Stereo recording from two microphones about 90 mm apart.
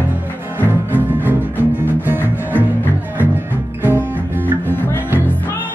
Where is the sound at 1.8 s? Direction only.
20° right (ahead or behind).